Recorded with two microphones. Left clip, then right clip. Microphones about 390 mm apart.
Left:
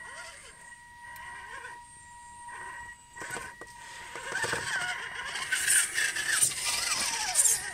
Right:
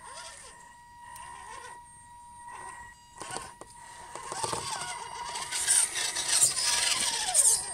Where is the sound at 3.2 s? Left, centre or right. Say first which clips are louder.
Left 1 dB; centre.